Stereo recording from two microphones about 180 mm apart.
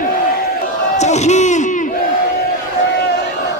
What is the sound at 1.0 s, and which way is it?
Crowd, 40° left (ahead or behind).